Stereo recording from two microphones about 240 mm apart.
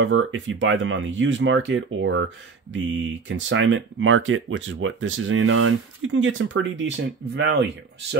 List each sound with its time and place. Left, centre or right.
0.0 s speech: right